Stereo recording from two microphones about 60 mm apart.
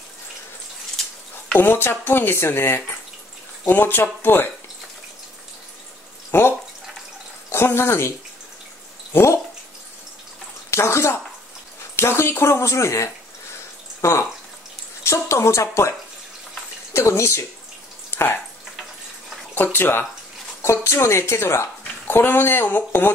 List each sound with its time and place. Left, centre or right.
1.6 s speech: left
7.4 s speech: left
9.1 s speech: left
10.7 s speech: left
15.0 s speech: left
16.9 s speech: left
18.1 s a sound: left
19.5 s speech: left
22.0 s speech: left